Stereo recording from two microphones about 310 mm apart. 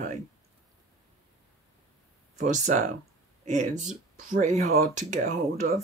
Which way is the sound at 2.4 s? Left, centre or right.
Right.